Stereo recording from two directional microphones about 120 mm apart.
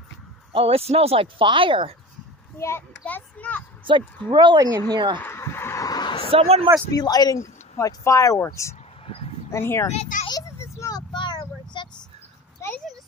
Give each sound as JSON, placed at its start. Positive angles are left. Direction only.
{"t": 0.5, "sound": "speech", "side_deg": -50}
{"t": 2.6, "sound": "a child's voice", "side_deg": 20}
{"t": 4.3, "sound": "speech", "side_deg": -40}
{"t": 5.2, "sound": "a sound", "side_deg": 20}
{"t": 6.3, "sound": "speech", "side_deg": -55}
{"t": 6.9, "sound": "speech", "side_deg": 30}
{"t": 9.0, "sound": "a sound", "side_deg": 55}
{"t": 9.5, "sound": "speech", "side_deg": 20}
{"t": 9.9, "sound": "a child's voice", "side_deg": 90}
{"t": 10.4, "sound": "a sound", "side_deg": 25}